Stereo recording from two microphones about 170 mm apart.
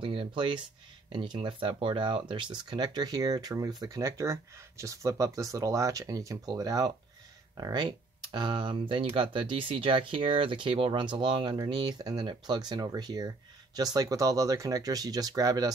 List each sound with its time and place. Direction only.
0.0 s speech: 30° right (ahead or behind)